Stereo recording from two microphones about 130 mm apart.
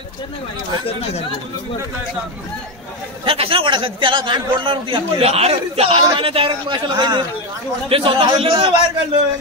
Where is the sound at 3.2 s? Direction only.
45° right (ahead or behind).